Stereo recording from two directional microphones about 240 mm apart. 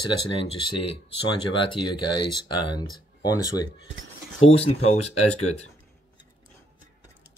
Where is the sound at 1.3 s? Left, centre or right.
Centre.